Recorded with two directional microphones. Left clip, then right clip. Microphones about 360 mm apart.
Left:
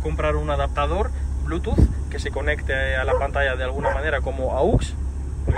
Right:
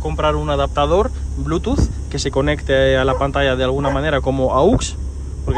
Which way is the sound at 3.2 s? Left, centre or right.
Right.